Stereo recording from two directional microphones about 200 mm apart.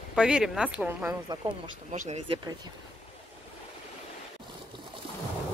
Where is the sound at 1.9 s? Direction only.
35° right (ahead or behind).